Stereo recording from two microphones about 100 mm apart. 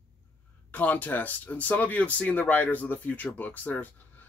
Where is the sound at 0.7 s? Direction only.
15° left (ahead or behind).